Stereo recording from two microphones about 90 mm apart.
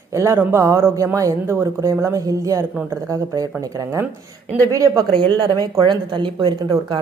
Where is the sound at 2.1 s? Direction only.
40° right (ahead or behind); by 6.7 s 60° right (ahead or behind).